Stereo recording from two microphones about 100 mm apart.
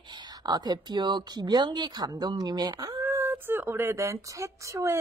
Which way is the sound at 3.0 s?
25° right (ahead or behind).